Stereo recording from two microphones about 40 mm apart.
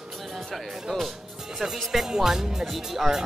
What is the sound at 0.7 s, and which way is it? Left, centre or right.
Speech, centre.